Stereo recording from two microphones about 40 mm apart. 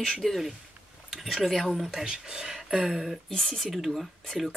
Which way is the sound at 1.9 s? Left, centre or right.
Centre.